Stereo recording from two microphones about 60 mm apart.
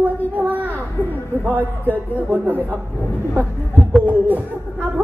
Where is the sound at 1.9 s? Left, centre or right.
Right.